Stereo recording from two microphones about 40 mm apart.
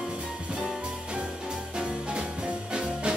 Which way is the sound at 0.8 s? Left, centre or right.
Right.